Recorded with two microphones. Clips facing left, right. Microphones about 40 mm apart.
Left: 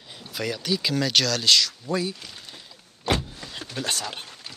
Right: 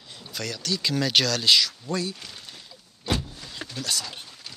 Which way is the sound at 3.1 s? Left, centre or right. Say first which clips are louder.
Left 3 dB; left.